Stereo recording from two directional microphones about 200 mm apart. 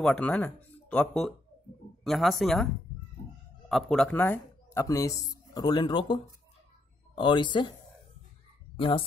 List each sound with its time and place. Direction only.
0.0 s speech: 5° left (ahead or behind); by 7.7 s 25° left (ahead or behind)
8.7 s speech: 25° left (ahead or behind)